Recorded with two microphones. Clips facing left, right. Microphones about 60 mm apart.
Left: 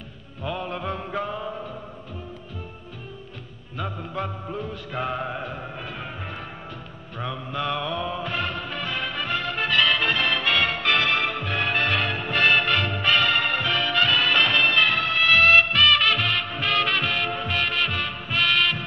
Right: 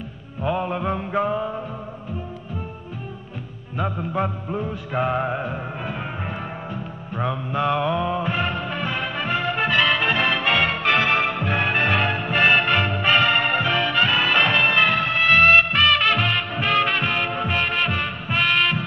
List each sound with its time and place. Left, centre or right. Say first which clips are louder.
0.4 s music: right 6 dB; right
3.7 s music: right 6 dB; right
7.2 s music: right 6 dB; right